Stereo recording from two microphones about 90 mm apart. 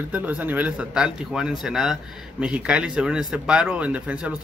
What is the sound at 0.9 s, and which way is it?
Speech, 5° right (ahead or behind).